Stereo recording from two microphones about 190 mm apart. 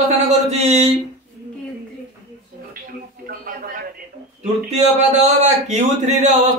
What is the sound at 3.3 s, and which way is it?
Speech, 50° right (ahead or behind).